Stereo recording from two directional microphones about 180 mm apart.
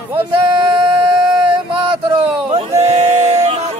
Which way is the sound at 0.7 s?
25° right (ahead or behind).